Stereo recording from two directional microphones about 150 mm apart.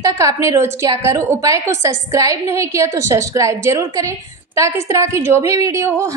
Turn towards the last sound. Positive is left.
turn(degrees=-20)  # may be behind; listen again after turning